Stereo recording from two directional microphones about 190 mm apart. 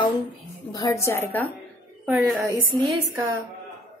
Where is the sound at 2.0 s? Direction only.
5° right (ahead or behind).